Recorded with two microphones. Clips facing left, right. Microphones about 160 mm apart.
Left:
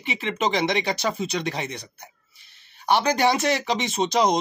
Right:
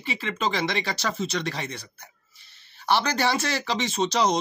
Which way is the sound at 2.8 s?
15° left (ahead or behind).